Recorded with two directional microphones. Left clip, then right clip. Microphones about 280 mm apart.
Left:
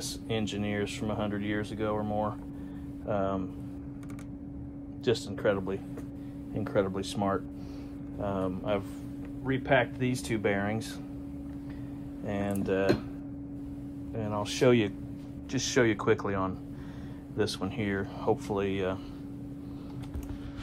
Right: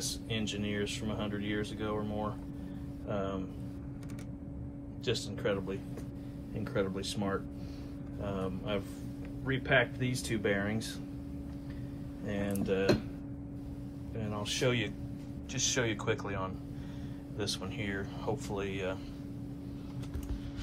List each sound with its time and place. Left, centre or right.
0.0 s speech: left
5.0 s speech: left
12.3 s speech: left
14.1 s speech: left
17.4 s speech: left